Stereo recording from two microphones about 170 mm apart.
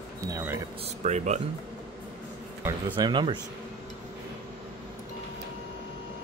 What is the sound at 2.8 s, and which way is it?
Speech, 30° right (ahead or behind).